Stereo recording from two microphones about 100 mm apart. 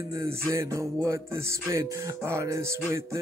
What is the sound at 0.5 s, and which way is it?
Music, 30° right (ahead or behind).